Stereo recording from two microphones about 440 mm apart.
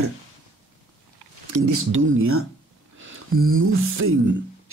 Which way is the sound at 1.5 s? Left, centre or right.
Right.